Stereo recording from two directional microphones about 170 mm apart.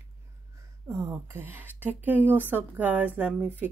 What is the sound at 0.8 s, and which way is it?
Speech, 15° right (ahead or behind).